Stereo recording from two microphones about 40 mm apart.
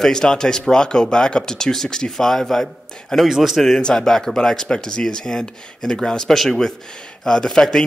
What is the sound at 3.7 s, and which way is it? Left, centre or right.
Speech, centre.